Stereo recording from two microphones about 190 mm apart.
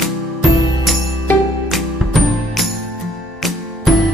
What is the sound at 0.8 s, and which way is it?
Music, centre (ahead or behind).